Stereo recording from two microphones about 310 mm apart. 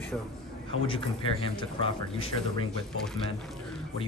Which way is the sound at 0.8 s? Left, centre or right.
Centre.